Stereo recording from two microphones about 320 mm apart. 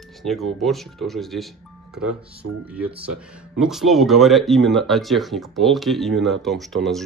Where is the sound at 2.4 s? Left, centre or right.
Right.